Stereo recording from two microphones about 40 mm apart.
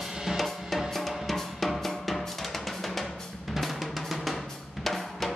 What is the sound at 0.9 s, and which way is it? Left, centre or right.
Drum, centre.